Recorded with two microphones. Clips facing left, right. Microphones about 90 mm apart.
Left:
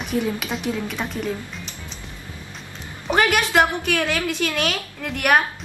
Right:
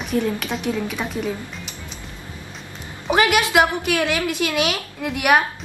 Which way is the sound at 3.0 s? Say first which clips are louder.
Right 2 dB; 5° right (ahead or behind).